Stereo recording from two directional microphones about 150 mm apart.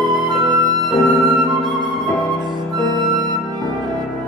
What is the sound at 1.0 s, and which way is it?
Music, centre (ahead or behind).